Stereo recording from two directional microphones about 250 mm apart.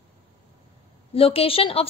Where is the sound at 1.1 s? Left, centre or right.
Left.